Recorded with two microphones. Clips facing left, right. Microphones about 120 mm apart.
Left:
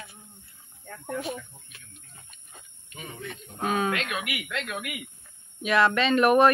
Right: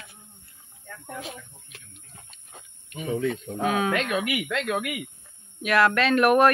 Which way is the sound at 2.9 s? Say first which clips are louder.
Right 6 dB; 65° right (ahead or behind).